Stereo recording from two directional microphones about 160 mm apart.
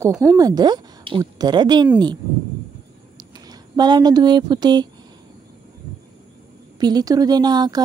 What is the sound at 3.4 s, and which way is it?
Speech, 25° right (ahead or behind).